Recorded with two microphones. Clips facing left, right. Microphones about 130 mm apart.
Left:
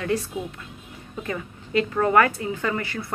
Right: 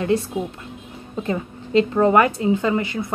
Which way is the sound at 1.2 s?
25° right (ahead or behind).